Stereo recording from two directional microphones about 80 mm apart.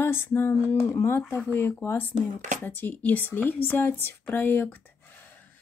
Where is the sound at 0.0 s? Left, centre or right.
Left.